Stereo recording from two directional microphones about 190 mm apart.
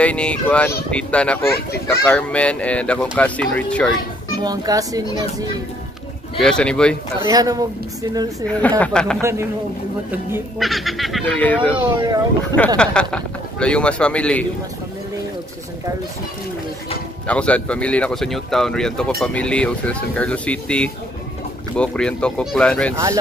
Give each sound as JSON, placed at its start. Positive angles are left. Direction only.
{"t": 0.0, "sound": "speech", "side_deg": 5}
{"t": 4.4, "sound": "speech", "side_deg": -20}
{"t": 6.4, "sound": "speech", "side_deg": 5}
{"t": 7.2, "sound": "speech", "side_deg": -20}
{"t": 8.5, "sound": "speech", "side_deg": 5}
{"t": 9.2, "sound": "a man's voice", "side_deg": -15}
{"t": 10.6, "sound": "speech", "side_deg": 0}
{"t": 17.3, "sound": "speech", "side_deg": 5}